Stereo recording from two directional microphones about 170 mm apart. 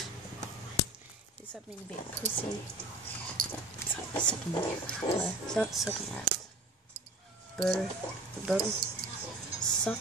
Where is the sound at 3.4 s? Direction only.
55° right (ahead or behind).